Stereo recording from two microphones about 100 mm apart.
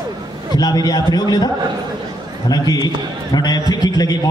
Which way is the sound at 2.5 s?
40° left (ahead or behind).